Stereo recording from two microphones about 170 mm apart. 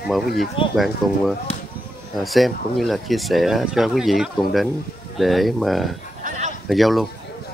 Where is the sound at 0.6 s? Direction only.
30° left (ahead or behind).